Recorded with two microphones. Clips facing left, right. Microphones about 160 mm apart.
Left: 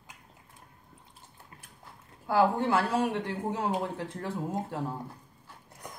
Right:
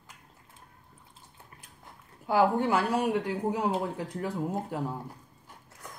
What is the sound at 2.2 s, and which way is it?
A woman's voice, 15° right (ahead or behind).